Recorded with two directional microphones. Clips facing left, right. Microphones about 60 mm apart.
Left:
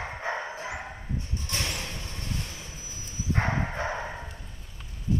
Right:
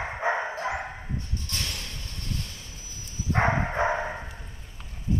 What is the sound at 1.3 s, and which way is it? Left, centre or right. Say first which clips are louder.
Vehicle: left 2 dB; left.